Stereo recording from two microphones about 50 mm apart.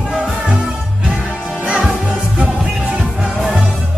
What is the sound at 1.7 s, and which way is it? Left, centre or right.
Music, centre.